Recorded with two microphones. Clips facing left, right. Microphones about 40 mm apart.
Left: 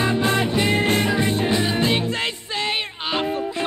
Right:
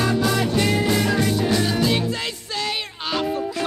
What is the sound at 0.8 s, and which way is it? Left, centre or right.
Music, left.